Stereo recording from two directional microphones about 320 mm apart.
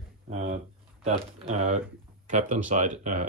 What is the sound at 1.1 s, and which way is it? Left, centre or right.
Speech, right.